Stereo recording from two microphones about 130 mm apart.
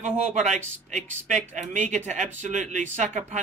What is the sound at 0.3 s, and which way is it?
Speech, 60° right (ahead or behind).